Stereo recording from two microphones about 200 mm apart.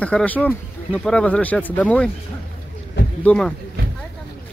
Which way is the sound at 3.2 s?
5° left (ahead or behind).